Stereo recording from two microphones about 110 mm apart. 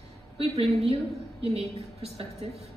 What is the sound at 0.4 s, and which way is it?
A woman's voice, 60° right (ahead or behind).